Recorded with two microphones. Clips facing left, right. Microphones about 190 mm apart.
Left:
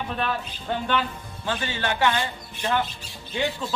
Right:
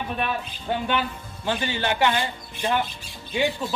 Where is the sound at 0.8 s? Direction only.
15° right (ahead or behind).